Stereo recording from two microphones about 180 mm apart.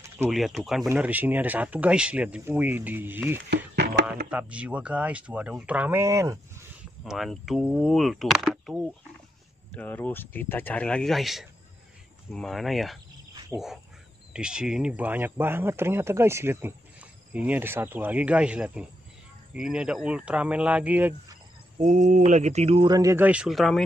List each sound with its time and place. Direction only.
0.3 s speech: centre (ahead or behind)
3.4 s speech: 65° right (ahead or behind)
4.3 s speech: 5° right (ahead or behind)
7.1 s speech: centre (ahead or behind)
14.3 s speech: 5° right (ahead or behind)
21.7 s speech: 45° right (ahead or behind); by 23.8 s centre (ahead or behind)